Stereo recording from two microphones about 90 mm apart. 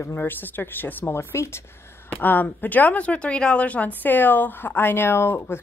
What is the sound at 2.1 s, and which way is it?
Speech, 20° left (ahead or behind).